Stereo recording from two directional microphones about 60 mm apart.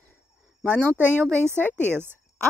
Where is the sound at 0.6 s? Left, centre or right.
Left.